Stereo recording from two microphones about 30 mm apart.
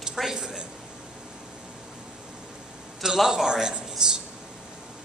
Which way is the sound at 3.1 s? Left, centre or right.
Centre.